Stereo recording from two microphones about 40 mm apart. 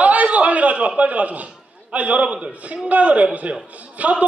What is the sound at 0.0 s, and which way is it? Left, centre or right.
A man's voice, right.